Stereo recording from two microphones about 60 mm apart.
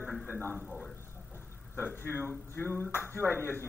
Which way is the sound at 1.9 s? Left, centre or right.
Left.